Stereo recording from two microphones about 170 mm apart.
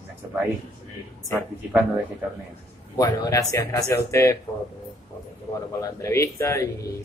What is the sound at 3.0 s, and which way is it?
Speech, 20° left (ahead or behind).